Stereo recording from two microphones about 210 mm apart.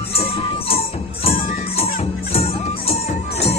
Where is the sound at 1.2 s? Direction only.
30° left (ahead or behind).